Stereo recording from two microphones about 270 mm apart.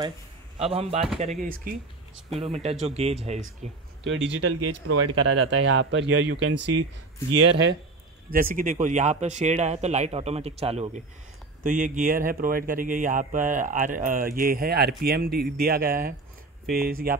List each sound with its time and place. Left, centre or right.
0.7 s speech: right
1.4 s speech: right
2.3 s speech: right
4.0 s speech: right
4.5 s speech: right
5.2 s speech: right